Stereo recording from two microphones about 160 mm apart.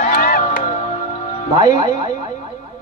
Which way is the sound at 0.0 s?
60° left (ahead or behind).